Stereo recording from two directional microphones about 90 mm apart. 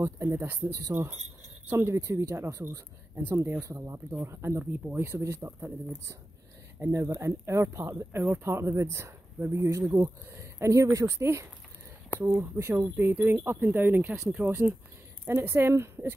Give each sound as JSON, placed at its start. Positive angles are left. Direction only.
{"t": 0.2, "sound": "speech", "side_deg": -25}
{"t": 0.9, "sound": "speech", "side_deg": -15}
{"t": 1.7, "sound": "speech", "side_deg": -25}
{"t": 3.2, "sound": "speech", "side_deg": -20}